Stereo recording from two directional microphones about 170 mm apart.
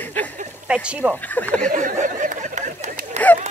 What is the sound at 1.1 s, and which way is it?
Speech, 10° left (ahead or behind).